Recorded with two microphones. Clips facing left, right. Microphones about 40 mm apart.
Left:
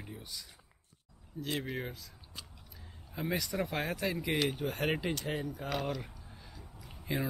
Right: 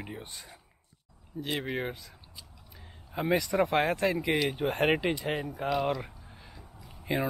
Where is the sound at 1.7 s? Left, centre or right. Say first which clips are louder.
Right 6 dB; right.